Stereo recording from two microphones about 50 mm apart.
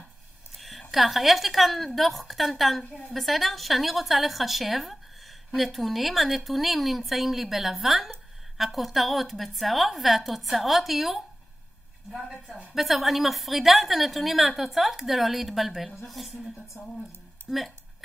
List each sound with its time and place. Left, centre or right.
0.6 s a woman's voice: centre
16.8 s speech: left
17.5 s a woman's voice: centre